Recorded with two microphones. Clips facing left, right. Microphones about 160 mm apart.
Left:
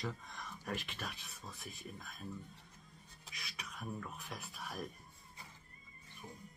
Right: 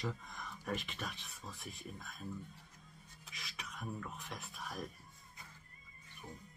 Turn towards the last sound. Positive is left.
turn(degrees=0)  # may be behind; listen again after turning